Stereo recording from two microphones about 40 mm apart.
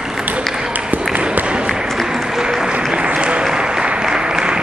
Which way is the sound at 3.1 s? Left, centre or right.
Right.